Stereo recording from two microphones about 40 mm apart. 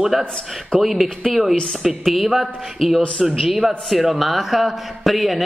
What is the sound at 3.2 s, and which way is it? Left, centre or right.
A man's voice, centre.